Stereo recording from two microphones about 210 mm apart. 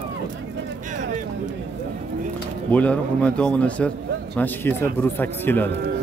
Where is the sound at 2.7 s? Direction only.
5° left (ahead or behind).